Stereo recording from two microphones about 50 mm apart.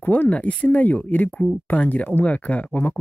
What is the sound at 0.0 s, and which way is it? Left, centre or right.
Speech, left.